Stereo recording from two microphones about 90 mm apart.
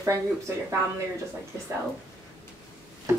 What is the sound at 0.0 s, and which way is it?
Speech, 35° right (ahead or behind).